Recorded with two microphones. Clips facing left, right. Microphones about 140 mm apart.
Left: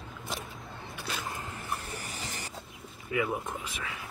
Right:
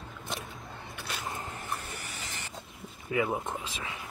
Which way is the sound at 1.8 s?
35° left (ahead or behind).